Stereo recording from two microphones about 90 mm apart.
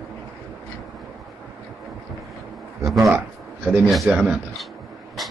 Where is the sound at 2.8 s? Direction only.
40° right (ahead or behind).